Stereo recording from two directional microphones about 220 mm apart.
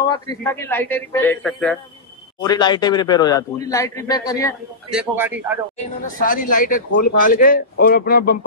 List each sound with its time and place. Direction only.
0.0 s a man's voice: 20° left (ahead or behind)
2.4 s a man's voice: 20° left (ahead or behind)
4.9 s a man's voice: 10° right (ahead or behind)
6.2 s speech: 40° left (ahead or behind)